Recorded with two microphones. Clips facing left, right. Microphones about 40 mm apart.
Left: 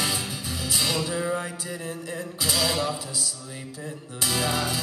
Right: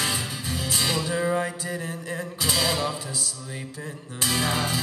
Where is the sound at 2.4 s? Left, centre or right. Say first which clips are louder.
Even; centre.